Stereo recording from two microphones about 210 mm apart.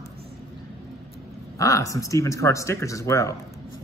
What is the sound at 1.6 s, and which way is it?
Speech, 15° left (ahead or behind).